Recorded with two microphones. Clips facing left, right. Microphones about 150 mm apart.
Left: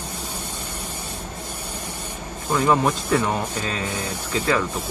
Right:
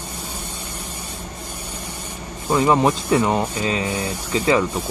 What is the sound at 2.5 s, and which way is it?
Speech, 15° right (ahead or behind).